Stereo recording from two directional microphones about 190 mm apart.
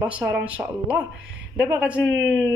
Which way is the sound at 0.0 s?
5° right (ahead or behind).